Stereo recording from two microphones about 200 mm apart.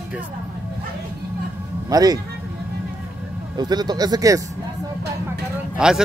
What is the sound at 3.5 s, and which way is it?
Speech, 20° right (ahead or behind).